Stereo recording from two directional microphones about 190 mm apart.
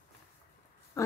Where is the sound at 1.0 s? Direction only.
15° left (ahead or behind).